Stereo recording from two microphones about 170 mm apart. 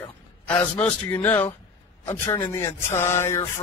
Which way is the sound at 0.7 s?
10° left (ahead or behind).